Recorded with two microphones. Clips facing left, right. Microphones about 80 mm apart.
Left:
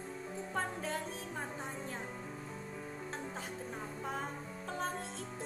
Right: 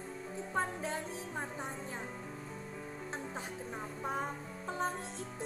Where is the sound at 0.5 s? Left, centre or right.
Right.